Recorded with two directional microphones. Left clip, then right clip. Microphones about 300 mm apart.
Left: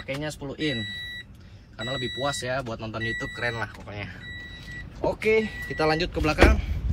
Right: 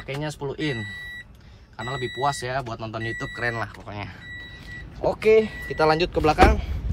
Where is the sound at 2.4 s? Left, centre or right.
Centre.